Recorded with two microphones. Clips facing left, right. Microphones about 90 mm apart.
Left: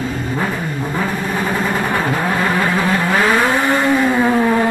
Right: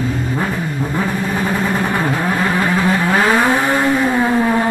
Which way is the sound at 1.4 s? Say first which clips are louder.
Even; centre (ahead or behind).